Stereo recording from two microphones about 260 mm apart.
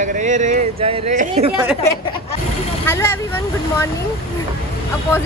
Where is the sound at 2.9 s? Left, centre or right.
Centre.